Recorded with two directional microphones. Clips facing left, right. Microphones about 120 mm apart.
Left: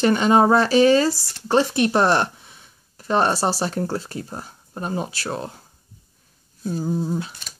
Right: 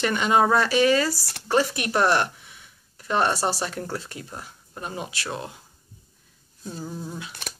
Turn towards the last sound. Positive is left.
turn(degrees=35)  # may be behind; listen again after turning